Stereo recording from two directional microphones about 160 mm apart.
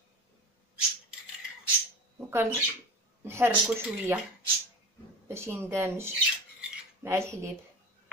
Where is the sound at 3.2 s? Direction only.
15° right (ahead or behind).